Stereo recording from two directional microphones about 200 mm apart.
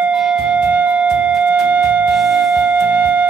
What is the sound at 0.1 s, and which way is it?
Music, 5° right (ahead or behind).